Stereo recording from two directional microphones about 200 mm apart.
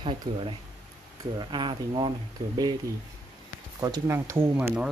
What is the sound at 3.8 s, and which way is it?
Speech, 15° right (ahead or behind).